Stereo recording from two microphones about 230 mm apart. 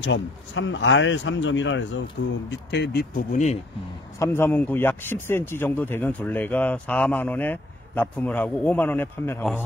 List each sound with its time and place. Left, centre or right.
0.0 s speech: left
4.2 s a man's voice: centre